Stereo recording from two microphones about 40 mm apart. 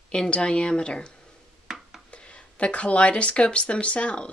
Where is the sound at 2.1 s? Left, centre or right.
Left.